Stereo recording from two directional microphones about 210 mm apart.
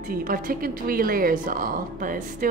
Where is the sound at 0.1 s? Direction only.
45° right (ahead or behind).